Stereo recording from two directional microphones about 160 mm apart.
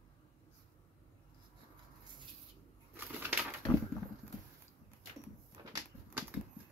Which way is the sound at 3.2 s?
10° right (ahead or behind).